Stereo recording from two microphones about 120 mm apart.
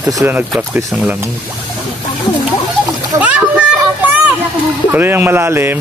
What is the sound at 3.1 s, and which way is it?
Splash, 25° right (ahead or behind).